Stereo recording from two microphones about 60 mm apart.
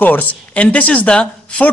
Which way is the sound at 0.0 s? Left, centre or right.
Left.